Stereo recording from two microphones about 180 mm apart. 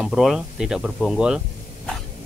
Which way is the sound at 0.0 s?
Centre (ahead or behind).